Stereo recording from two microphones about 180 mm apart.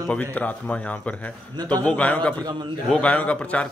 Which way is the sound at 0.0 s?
10° left (ahead or behind).